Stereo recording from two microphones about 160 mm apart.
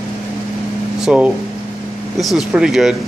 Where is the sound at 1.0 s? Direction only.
5° right (ahead or behind).